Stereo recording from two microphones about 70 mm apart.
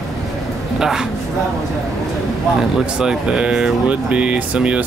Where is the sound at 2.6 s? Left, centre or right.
Centre.